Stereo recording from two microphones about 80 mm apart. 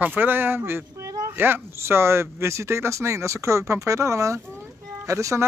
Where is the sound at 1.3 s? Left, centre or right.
Right.